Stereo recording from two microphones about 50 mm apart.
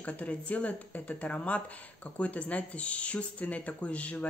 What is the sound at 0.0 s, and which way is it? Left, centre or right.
Speech, left.